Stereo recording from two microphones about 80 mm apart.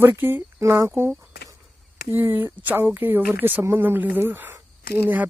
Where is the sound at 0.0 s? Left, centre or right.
Right.